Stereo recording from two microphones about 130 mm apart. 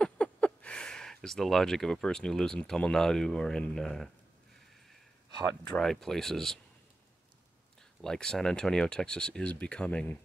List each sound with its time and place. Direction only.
0.0 s speech: 10° left (ahead or behind)
5.8 s speech: 5° left (ahead or behind)
8.0 s speech: 5° left (ahead or behind)